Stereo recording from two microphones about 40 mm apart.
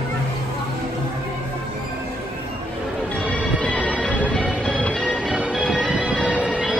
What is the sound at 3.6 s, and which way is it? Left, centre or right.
Music, left.